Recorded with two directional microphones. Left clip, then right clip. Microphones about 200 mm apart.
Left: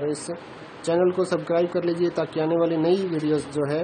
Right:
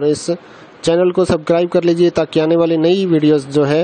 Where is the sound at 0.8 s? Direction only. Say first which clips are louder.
Right 8 dB; 45° right (ahead or behind).